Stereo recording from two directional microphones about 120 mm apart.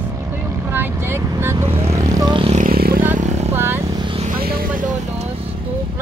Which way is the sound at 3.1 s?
80° right.